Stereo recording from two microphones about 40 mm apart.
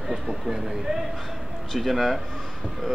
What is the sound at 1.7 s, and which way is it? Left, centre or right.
Speech, centre.